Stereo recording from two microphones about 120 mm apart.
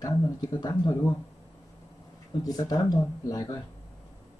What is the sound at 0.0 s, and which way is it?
Speech, 35° left (ahead or behind).